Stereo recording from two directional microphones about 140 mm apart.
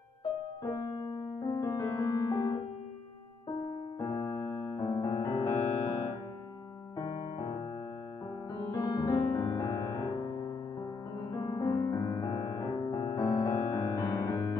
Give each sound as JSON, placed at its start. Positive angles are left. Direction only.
{"t": 1.5, "sound": "music", "side_deg": 30}
{"t": 4.0, "sound": "piano", "side_deg": 25}
{"t": 5.0, "sound": "music", "side_deg": 25}
{"t": 8.7, "sound": "music", "side_deg": 25}